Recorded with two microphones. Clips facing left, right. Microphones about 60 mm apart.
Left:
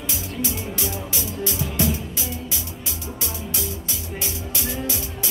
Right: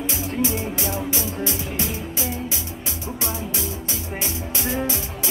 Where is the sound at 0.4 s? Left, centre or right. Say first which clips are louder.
Right 4 dB; right.